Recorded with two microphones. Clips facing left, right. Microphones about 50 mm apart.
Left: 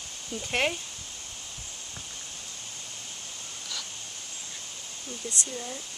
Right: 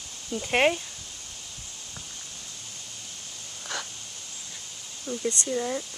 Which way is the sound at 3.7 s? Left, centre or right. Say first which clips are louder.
Right 6 dB; right.